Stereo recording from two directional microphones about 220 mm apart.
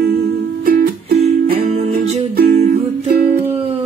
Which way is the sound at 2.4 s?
45° right (ahead or behind).